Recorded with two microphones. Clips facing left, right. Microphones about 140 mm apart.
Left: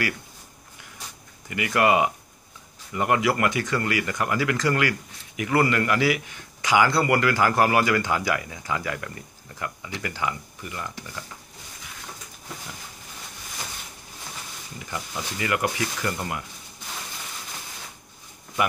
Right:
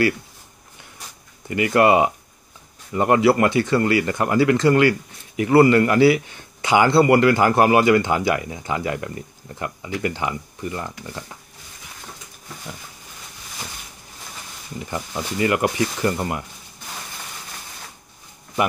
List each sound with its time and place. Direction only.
1.5 s speech: 30° right (ahead or behind)
14.9 s speech: 30° right (ahead or behind)